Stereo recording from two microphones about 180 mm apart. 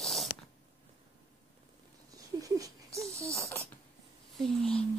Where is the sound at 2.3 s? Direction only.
20° right (ahead or behind).